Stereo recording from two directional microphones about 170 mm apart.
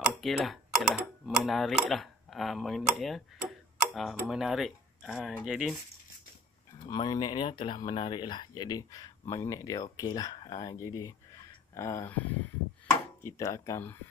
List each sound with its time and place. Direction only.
0.0 s speech: centre (ahead or behind)
6.8 s speech: 25° left (ahead or behind)